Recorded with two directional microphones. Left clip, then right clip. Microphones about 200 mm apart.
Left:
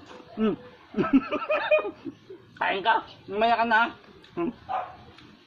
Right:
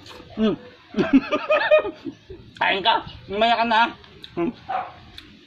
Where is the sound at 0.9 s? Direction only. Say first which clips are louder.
Right 5 dB; 5° right (ahead or behind).